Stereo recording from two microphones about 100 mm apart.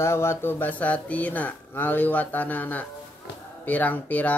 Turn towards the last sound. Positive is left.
turn(degrees=15)  # may be behind; listen again after turning